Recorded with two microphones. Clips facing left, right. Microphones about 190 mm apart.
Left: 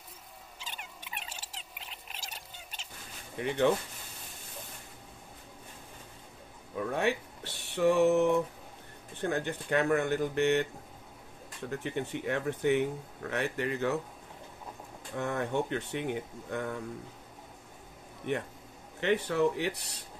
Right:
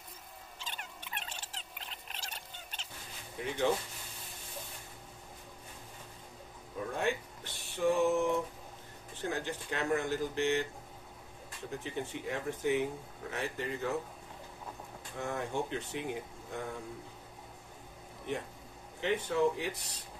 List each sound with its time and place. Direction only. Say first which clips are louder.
0.6 s rodents: even; 5° left (ahead or behind)
3.3 s speech: left 4 dB; 60° left (ahead or behind)
7.0 s speech: left 2 dB; 70° left (ahead or behind)
9.2 s speech: left 4 dB; 60° left (ahead or behind)
11.7 s speech: left 4 dB; 65° left (ahead or behind)
15.1 s speech: left 4 dB; 65° left (ahead or behind)
18.3 s speech: left 5 dB; 65° left (ahead or behind)